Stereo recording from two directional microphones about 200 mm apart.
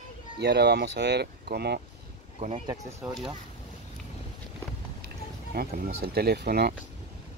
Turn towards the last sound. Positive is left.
turn(degrees=-55)  # may be behind; listen again after turning